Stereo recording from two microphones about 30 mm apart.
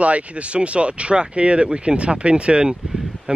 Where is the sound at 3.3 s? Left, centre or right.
Right.